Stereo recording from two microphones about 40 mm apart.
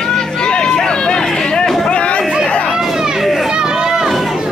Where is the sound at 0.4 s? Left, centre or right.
Left.